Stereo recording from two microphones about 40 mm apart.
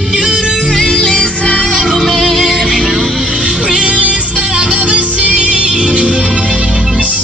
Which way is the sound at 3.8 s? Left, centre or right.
Right.